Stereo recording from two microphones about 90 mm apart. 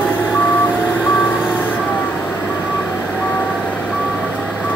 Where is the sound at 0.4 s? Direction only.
15° left (ahead or behind).